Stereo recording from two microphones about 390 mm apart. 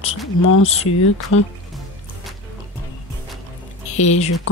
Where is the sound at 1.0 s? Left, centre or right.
Left.